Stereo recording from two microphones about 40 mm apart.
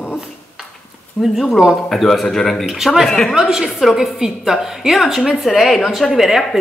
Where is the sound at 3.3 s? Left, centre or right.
Centre.